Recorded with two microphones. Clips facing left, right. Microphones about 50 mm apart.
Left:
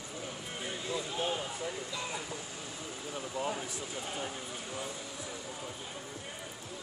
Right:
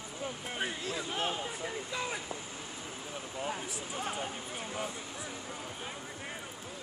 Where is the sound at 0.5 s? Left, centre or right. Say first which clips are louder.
Even; right.